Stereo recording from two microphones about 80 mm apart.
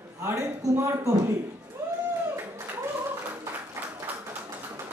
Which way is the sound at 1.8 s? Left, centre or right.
Right.